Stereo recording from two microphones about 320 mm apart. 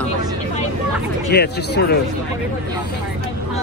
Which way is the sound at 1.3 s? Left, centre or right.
Left.